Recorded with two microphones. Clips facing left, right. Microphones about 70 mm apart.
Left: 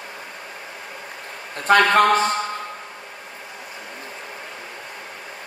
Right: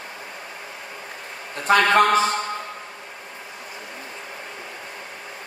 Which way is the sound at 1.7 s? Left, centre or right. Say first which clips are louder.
Left 1 dB; left.